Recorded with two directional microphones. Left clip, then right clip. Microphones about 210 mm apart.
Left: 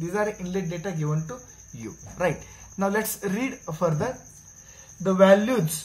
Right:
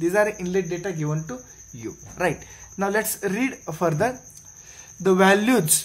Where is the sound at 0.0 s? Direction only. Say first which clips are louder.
Right 6 dB; 45° right (ahead or behind); by 1.3 s 30° right (ahead or behind).